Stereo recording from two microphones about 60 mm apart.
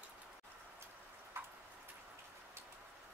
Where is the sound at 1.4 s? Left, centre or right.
Right.